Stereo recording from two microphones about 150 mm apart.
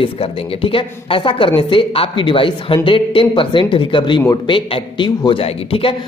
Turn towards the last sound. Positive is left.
turn(degrees=40)  # may be behind; listen again after turning